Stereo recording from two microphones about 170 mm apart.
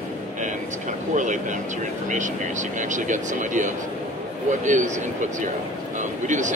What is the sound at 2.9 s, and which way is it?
A man's voice, 45° right (ahead or behind).